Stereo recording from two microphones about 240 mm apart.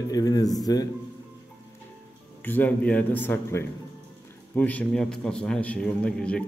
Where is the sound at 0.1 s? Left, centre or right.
Centre.